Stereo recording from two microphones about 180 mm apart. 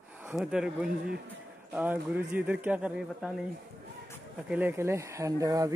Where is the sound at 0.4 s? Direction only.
5° right (ahead or behind).